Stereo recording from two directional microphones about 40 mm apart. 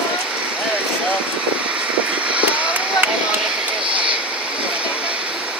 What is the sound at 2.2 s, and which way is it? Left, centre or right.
Vehicle, right.